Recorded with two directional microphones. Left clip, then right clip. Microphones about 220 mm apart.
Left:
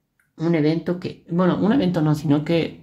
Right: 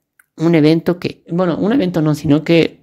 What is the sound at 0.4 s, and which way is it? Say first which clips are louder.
Speech: right 8 dB; 45° right (ahead or behind).